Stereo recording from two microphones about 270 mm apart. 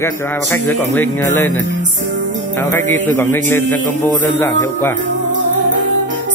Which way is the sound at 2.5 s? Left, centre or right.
Centre.